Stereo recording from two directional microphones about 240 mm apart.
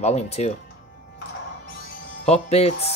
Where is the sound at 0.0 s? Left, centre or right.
Left.